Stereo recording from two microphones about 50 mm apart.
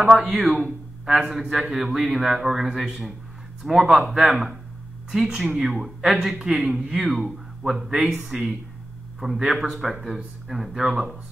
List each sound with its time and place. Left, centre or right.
0.1 s a man's voice: centre
5.1 s a man's voice: centre
6.7 s speech: centre
7.2 s a man's voice: centre